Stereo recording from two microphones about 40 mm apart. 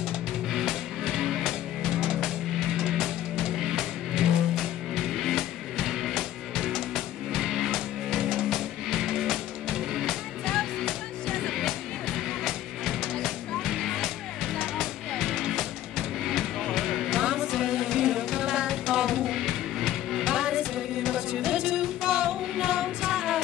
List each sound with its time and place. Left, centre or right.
0.5 s music: centre
10.4 s music: centre
11.5 s music: centre
17.2 s music: centre
19.2 s music: centre
20.3 s music: centre